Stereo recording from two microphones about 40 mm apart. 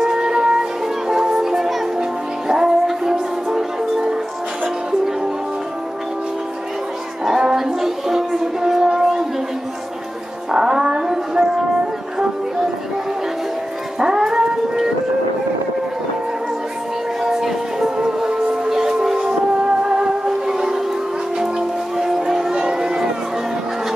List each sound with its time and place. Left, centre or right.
0.0 s music: centre
7.2 s a sound: centre
10.5 s music: centre
13.9 s dog: centre
17.2 s music: centre
22.6 s a sound: centre